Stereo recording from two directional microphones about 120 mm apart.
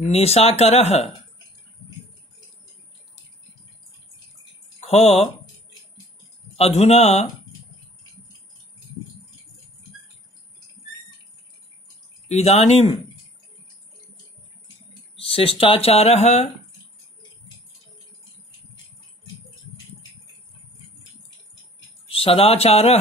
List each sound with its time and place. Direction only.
0.1 s speech: 60° left (ahead or behind)
4.7 s speech: 65° left (ahead or behind)
6.5 s speech: 60° left (ahead or behind)
12.3 s speech: 65° left (ahead or behind)
15.1 s speech: 55° left (ahead or behind)
22.1 s speech: 50° left (ahead or behind)